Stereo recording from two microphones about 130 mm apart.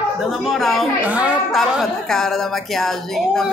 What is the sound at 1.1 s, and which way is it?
Speech, 10° right (ahead or behind).